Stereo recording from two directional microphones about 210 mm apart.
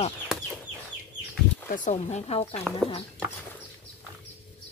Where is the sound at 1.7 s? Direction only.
35° left (ahead or behind).